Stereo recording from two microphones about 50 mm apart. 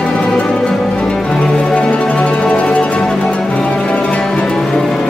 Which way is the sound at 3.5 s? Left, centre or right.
Left.